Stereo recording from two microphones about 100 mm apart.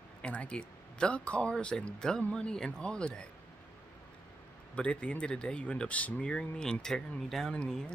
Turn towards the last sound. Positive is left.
turn(degrees=5)  # may be behind; listen again after turning